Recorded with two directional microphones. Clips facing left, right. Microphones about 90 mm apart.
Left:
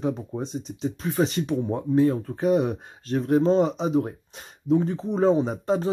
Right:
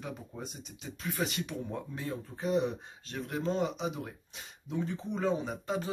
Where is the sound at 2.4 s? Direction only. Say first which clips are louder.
Left 6 dB; 55° left (ahead or behind).